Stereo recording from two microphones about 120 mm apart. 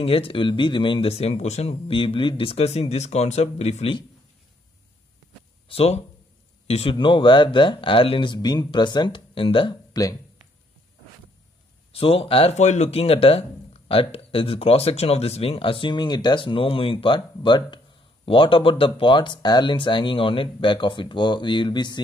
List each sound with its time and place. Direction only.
0.0 s speech: 50° left (ahead or behind)
5.7 s speech: 60° left (ahead or behind)
6.7 s speech: 50° left (ahead or behind)
11.9 s speech: 50° left (ahead or behind)